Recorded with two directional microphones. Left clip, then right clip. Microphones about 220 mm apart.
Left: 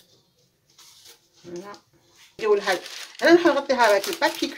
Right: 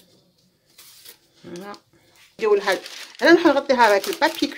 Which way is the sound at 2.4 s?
40° right (ahead or behind).